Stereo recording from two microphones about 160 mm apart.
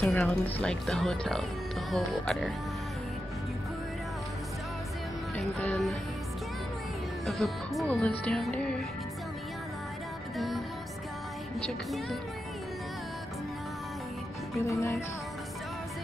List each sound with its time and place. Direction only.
0.0 s speech: 5° left (ahead or behind)
5.3 s speech: centre (ahead or behind)
7.2 s speech: centre (ahead or behind)
10.3 s music: centre (ahead or behind)
11.6 s speech: centre (ahead or behind)
14.6 s music: 15° left (ahead or behind)